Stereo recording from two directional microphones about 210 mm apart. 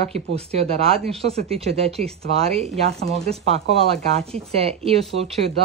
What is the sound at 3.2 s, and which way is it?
Speech, 30° right (ahead or behind).